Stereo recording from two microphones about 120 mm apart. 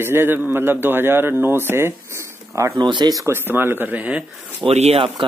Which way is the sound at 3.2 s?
20° right (ahead or behind).